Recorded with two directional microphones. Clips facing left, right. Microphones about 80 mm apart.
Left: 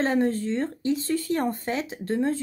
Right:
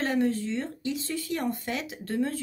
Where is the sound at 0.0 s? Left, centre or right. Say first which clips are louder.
Left 3 dB; left.